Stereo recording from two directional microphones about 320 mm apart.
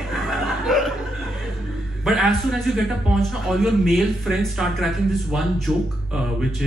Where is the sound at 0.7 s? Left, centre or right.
Centre.